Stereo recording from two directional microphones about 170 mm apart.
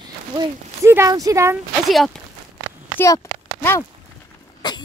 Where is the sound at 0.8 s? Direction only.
15° right (ahead or behind).